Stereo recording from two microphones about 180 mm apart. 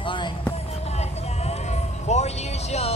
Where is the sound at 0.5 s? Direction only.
35° left (ahead or behind).